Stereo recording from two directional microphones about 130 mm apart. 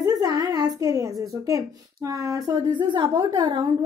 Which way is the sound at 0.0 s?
30° right (ahead or behind).